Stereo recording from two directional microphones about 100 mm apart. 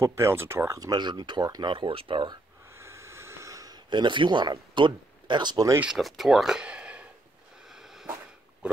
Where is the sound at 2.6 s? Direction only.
25° right (ahead or behind); by 5.6 s 50° right (ahead or behind).